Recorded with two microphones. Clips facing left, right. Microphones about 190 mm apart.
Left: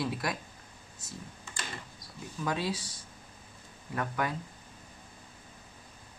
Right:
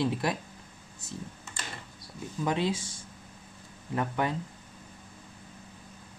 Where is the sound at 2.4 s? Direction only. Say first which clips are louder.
Right 4 dB; 20° right (ahead or behind).